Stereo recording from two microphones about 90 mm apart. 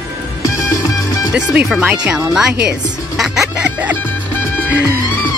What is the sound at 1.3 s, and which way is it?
Speech, 10° right (ahead or behind).